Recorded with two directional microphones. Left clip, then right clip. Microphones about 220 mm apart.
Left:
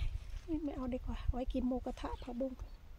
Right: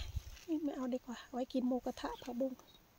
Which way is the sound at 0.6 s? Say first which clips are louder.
Right 1 dB; 10° right (ahead or behind).